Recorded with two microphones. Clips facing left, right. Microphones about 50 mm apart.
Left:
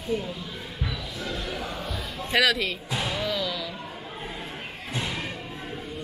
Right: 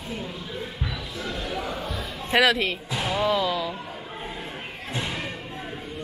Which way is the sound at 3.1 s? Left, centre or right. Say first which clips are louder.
Right 8 dB; right.